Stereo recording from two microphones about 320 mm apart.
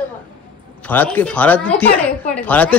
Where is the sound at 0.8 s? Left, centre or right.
Centre.